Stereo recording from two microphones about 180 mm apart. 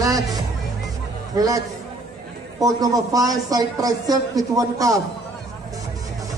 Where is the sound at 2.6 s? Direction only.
20° right (ahead or behind).